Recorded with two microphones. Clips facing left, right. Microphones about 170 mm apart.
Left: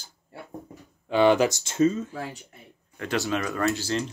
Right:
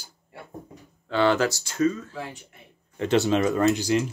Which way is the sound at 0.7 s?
15° left (ahead or behind).